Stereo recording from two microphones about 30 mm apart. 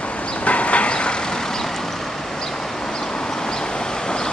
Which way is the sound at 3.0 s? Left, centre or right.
Left.